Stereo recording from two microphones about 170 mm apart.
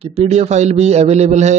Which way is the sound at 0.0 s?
40° right (ahead or behind).